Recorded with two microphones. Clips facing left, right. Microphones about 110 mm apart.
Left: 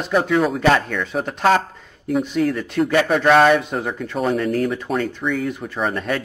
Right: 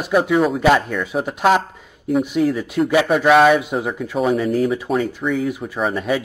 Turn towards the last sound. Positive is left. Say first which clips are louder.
# right 2 dB
turn(degrees=-5)  # may be behind; listen again after turning